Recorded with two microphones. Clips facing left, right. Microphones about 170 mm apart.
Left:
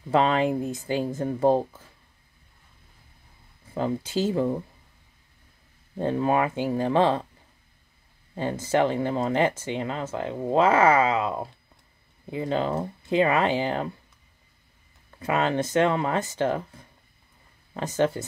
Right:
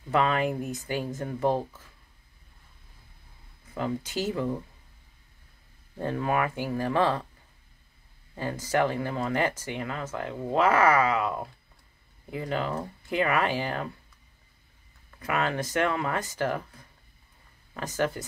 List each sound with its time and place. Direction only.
0.1 s speech: 25° left (ahead or behind)
3.7 s speech: 30° left (ahead or behind)
5.9 s speech: 25° left (ahead or behind)
8.4 s speech: 25° left (ahead or behind)
15.1 s speech: 25° left (ahead or behind)
17.7 s speech: 25° left (ahead or behind)